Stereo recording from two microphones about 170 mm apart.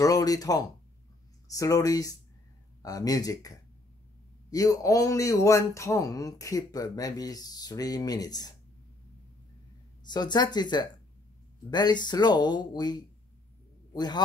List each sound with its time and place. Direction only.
0.0 s a man's voice: 20° left (ahead or behind)
10.0 s a man's voice: 25° left (ahead or behind)